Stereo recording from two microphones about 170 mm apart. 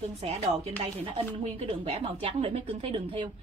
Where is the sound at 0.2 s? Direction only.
35° right (ahead or behind).